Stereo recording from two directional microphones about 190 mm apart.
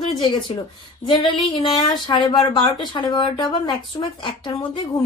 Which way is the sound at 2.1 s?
30° left (ahead or behind).